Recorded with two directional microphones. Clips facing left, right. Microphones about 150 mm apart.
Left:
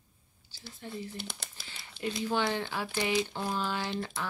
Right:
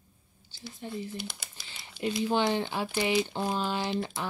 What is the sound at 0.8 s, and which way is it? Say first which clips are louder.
Speech: right 3 dB; 20° right (ahead or behind).